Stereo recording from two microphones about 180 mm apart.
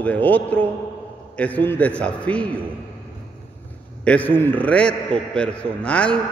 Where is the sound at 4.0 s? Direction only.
5° left (ahead or behind).